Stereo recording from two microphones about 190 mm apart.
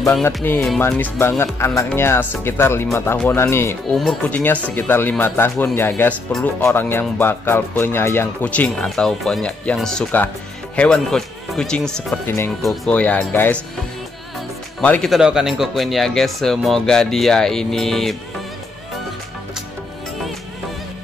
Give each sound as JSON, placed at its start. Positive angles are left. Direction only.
{"t": 0.1, "sound": "speech", "side_deg": 5}
{"t": 3.9, "sound": "speech", "side_deg": 5}
{"t": 14.8, "sound": "speech", "side_deg": 5}